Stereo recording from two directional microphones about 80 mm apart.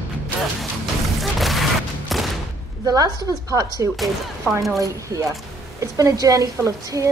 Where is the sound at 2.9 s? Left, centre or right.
Right.